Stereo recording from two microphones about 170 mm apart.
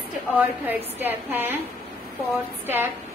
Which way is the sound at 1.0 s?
10° right (ahead or behind).